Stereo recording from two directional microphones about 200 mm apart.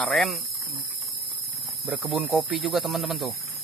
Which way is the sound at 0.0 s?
Centre (ahead or behind).